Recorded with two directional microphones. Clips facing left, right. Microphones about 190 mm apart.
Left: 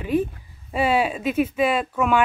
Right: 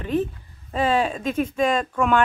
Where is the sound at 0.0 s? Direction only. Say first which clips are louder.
Left 1 dB; 10° left (ahead or behind).